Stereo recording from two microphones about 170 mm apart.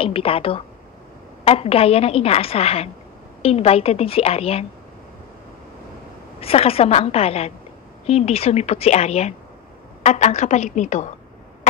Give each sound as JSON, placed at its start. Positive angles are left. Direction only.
{"t": 0.0, "sound": "a woman's voice", "side_deg": 35}
{"t": 6.4, "sound": "a woman's voice", "side_deg": 35}